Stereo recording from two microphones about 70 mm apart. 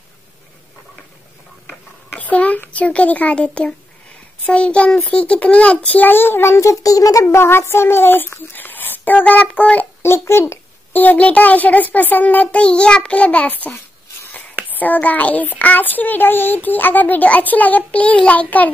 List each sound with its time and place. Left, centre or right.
2.1 s a sound: centre
2.7 s a child's voice: centre; by 7.3 s left
7.3 s speech: left
10.0 s a child's voice: left
10.9 s a child's voice: left